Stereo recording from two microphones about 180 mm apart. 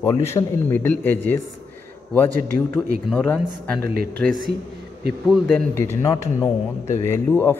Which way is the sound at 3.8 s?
55° right (ahead or behind).